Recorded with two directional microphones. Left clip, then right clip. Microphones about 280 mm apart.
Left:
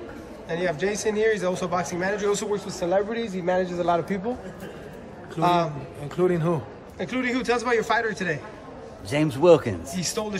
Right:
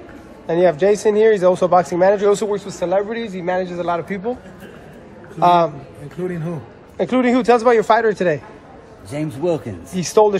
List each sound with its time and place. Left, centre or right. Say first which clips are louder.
0.5 s speech: right 12 dB; centre
5.4 s speech: right 8 dB; centre
6.2 s speech: left 3 dB; left
7.0 s speech: right 10 dB; centre